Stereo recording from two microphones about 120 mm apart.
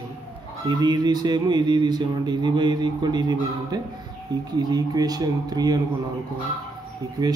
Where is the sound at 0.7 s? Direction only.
35° right (ahead or behind).